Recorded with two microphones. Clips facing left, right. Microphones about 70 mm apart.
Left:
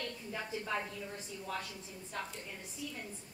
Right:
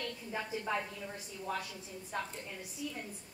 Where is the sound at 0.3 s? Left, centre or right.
Centre.